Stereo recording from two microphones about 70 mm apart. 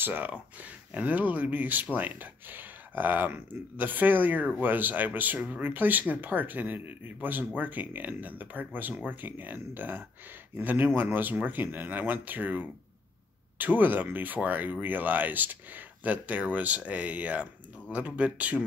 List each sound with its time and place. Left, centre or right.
0.0 s speech: right